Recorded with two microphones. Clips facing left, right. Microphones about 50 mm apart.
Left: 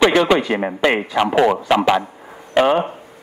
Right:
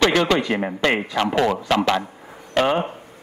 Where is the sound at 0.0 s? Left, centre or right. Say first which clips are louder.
Left 4 dB; centre.